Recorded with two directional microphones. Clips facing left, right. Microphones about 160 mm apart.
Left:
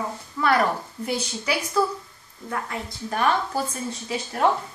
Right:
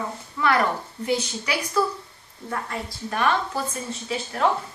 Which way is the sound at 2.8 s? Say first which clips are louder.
Left 1 dB; 15° left (ahead or behind).